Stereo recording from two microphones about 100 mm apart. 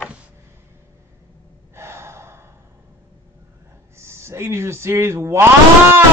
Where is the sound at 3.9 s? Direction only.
25° right (ahead or behind).